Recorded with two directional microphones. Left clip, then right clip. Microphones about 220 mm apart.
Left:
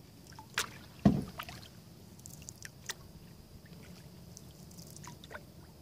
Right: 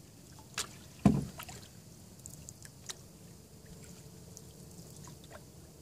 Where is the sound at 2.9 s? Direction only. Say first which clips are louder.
Left 3 dB; 20° left (ahead or behind).